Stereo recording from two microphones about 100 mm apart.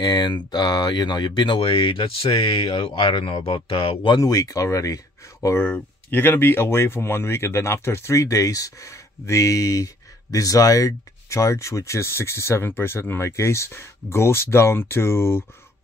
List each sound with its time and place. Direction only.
0.0 s speech: 45° left (ahead or behind)
4.2 s speech: 35° left (ahead or behind)
5.6 s speech: 20° left (ahead or behind)